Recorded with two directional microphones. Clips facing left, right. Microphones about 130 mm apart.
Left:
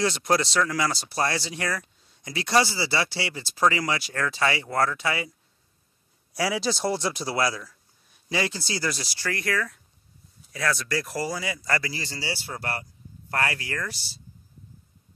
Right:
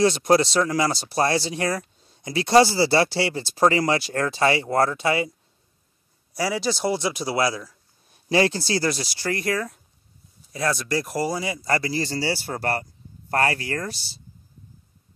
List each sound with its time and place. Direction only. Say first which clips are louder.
0.0 s speech: right 6 dB; 25° right (ahead or behind)
6.3 s speech: right 2 dB; centre (ahead or behind); by 7.7 s 20° right (ahead or behind)
8.3 s speech: right 8 dB; 55° right (ahead or behind)
8.7 s speech: right 6 dB; 30° right (ahead or behind)